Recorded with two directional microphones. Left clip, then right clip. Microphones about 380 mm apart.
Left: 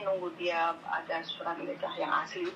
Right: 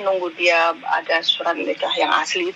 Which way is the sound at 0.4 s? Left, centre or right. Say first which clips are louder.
Right 16 dB; right.